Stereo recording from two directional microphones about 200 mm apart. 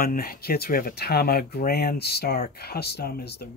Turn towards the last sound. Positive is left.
turn(degrees=55)  # may be behind; listen again after turning